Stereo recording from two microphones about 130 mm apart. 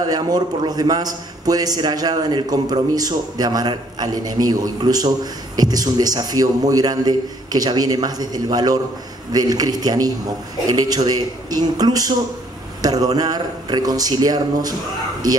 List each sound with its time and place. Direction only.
0.1 s a man's voice: 30° right (ahead or behind)